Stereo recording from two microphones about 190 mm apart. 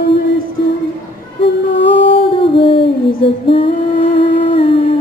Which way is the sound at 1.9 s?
30° left (ahead or behind).